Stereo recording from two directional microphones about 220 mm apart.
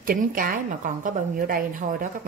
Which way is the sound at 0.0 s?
40° right (ahead or behind).